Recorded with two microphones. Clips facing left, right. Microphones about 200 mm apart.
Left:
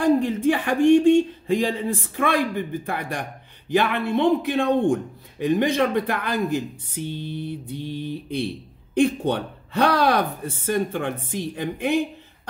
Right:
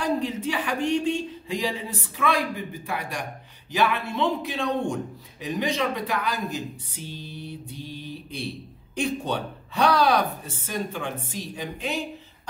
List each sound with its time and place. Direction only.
0.0 s a man's voice: 55° left (ahead or behind)